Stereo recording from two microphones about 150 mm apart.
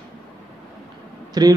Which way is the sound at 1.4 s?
25° right (ahead or behind).